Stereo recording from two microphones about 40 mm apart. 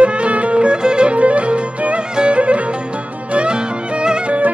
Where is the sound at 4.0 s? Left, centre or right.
Right.